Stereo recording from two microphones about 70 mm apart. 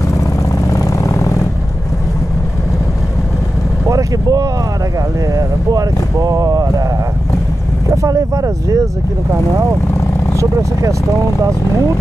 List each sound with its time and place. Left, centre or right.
0.5 s vehicle: left
3.8 s vehicle: right
5.3 s speech: right
7.9 s speech: right